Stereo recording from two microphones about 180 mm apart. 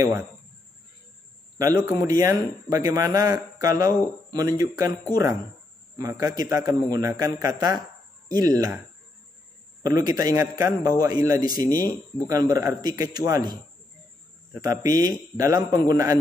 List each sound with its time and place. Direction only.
1.6 s a man's voice: 20° right (ahead or behind)
9.8 s a man's voice: 20° right (ahead or behind)
14.6 s a man's voice: 20° right (ahead or behind)